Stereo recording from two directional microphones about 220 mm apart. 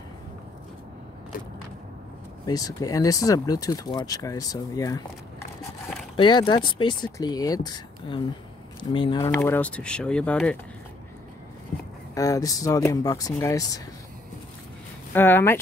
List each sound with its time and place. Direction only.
2.4 s speech: 15° left (ahead or behind)
6.1 s speech: 20° left (ahead or behind); by 10.6 s 5° left (ahead or behind)
12.1 s speech: 15° left (ahead or behind)
15.1 s speech: 10° left (ahead or behind)